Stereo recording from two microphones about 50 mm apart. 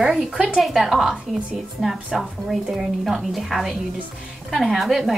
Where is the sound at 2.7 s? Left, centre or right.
Centre.